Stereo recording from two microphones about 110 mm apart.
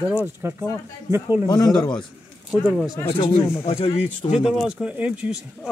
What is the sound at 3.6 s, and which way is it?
Speech, 70° left (ahead or behind).